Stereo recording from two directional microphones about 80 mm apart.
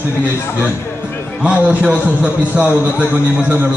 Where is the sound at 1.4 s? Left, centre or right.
Centre.